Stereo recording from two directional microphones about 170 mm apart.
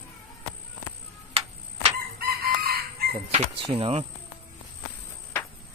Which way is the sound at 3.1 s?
35° right (ahead or behind).